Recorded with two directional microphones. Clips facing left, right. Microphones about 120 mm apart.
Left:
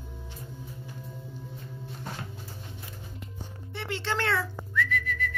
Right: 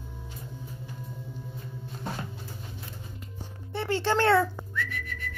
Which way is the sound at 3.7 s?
45° right (ahead or behind).